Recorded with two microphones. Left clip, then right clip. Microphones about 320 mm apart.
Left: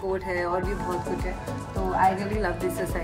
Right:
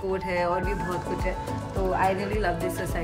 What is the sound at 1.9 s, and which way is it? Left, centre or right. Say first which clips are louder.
Speech: left 3 dB; centre.